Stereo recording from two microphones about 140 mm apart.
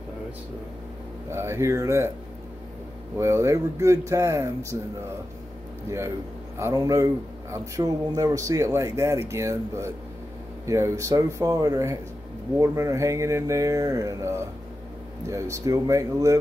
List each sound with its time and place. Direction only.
1.3 s speech: 20° right (ahead or behind)
3.2 s speech: 20° right (ahead or behind)
5.9 s speech: 20° right (ahead or behind)